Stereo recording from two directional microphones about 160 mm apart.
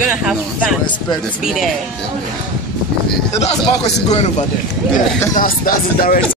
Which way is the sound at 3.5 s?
45° left (ahead or behind).